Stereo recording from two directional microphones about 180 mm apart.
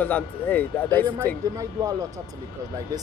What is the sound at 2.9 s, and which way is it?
Speech, 20° right (ahead or behind).